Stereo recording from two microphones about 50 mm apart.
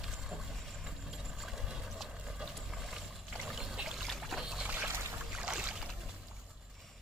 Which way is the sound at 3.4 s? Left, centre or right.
Centre.